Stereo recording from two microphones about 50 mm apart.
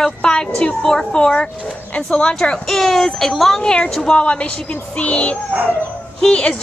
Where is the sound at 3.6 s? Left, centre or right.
Centre.